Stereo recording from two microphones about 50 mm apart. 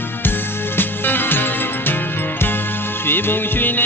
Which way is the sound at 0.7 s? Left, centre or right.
Left.